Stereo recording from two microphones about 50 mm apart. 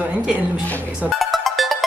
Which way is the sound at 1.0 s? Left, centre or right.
Centre.